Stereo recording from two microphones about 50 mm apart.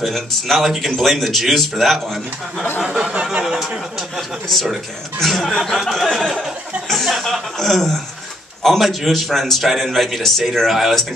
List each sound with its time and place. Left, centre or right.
0.0 s a man's voice: centre
2.9 s a sound: centre
4.5 s a man's voice: centre